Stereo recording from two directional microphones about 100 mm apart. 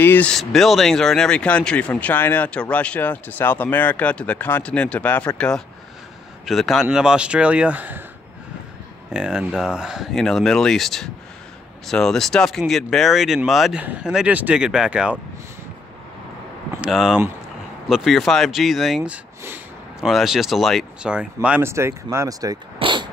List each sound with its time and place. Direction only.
0.0 s speech: 20° left (ahead or behind)
0.3 s speech: 5° left (ahead or behind)
6.4 s speech: centre (ahead or behind)
9.1 s speech: 10° right (ahead or behind)
13.7 s speech: 15° right (ahead or behind)
16.8 s speech: 5° right (ahead or behind)
21.6 s speech: 25° right (ahead or behind)
22.8 s a sound: 55° right (ahead or behind)